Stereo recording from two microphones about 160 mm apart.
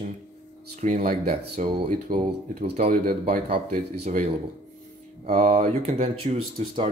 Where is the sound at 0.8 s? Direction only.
50° right (ahead or behind).